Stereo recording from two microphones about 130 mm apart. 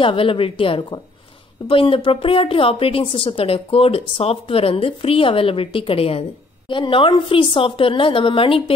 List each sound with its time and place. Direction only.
0.0 s speech: 40° left (ahead or behind)